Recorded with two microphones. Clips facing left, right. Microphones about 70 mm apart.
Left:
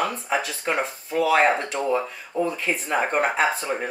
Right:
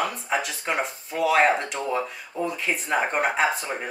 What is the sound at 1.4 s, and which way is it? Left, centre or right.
Speech, left.